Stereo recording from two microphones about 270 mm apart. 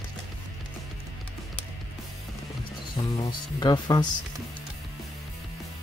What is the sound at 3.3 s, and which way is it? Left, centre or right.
Speech, centre.